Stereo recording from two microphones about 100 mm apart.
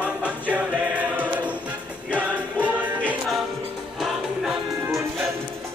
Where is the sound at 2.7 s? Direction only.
15° right (ahead or behind).